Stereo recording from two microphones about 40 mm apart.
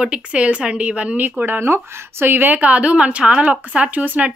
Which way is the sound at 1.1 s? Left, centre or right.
Right.